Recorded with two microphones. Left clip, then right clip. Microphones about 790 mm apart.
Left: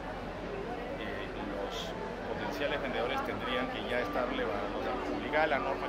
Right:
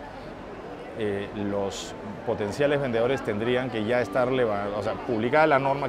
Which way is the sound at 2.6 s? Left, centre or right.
Right.